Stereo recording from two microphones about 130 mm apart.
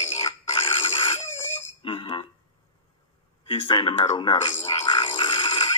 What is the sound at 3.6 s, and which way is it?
Speech, 40° left (ahead or behind).